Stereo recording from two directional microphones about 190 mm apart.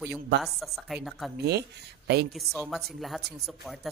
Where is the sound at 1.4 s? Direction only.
60° right (ahead or behind).